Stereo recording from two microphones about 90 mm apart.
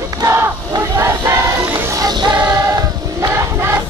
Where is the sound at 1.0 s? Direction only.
30° right (ahead or behind).